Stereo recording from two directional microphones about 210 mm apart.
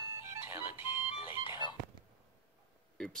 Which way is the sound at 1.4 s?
20° left (ahead or behind).